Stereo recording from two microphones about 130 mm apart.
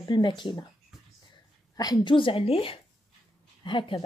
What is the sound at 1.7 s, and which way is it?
A woman's voice, 30° left (ahead or behind).